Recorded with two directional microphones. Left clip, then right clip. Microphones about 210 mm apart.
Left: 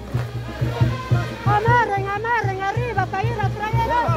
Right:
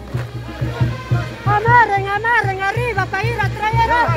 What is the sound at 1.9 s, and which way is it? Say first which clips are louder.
Music: right 5 dB; 45° right (ahead or behind).